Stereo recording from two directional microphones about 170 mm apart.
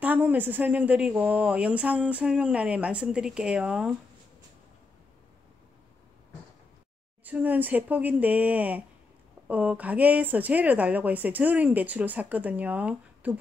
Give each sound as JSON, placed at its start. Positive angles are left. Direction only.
{"t": 0.0, "sound": "speech", "side_deg": -10}
{"t": 7.2, "sound": "speech", "side_deg": -10}